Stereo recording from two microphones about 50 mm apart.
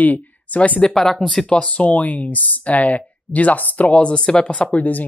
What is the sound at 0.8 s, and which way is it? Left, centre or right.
Speech, centre.